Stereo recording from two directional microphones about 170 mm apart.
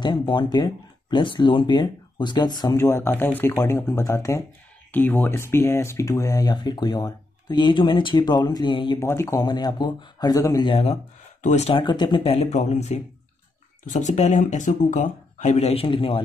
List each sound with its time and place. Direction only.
0.0 s speech: 25° left (ahead or behind)
9.0 s speech: 15° left (ahead or behind)
10.7 s speech: 35° left (ahead or behind)
11.8 s speech: 25° left (ahead or behind)